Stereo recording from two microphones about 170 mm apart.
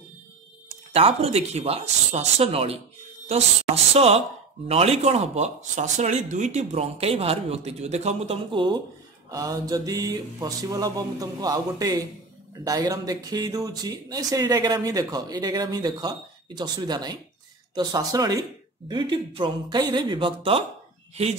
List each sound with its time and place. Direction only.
0.9 s speech: 35° right (ahead or behind)